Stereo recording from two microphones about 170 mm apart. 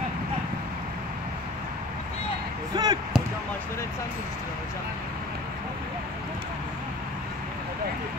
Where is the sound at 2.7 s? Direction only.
25° right (ahead or behind).